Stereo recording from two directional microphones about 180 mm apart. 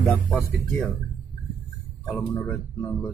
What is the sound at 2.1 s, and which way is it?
Speech, 20° left (ahead or behind).